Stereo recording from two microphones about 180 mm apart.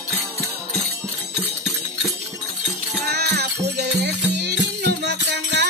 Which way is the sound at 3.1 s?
65° right (ahead or behind).